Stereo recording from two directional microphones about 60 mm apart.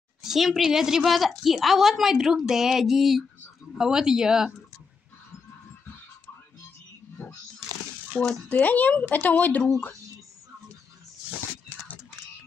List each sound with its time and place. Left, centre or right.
0.2 s a woman's voice: centre
8.2 s a woman's voice: centre
8.5 s speech: left